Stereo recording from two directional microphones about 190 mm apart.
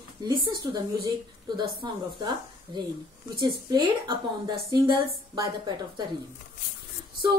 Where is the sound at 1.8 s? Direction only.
25° right (ahead or behind).